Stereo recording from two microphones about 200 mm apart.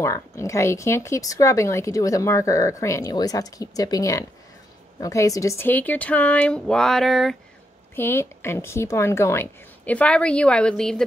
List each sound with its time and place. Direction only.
0.0 s speech: 15° left (ahead or behind)
7.9 s speech: 10° left (ahead or behind)